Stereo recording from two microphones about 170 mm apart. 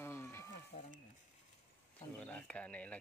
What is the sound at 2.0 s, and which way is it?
Speech, 5° left (ahead or behind).